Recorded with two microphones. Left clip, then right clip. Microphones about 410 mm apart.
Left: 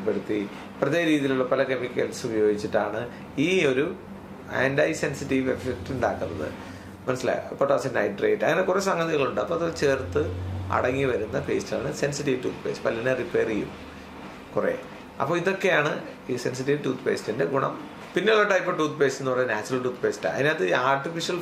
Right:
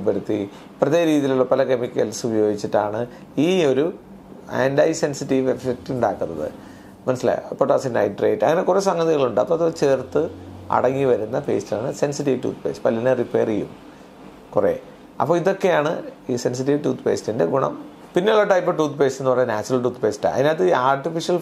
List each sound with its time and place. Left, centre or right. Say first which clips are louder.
0.3 s speech: right 4 dB; right
15.1 s speech: right 6 dB; right